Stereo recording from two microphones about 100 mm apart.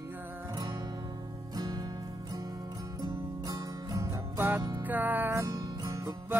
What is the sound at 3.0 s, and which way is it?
Music, 35° right (ahead or behind).